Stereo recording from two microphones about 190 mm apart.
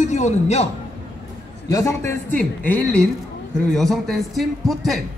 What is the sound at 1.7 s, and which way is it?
A man's voice, 15° left (ahead or behind).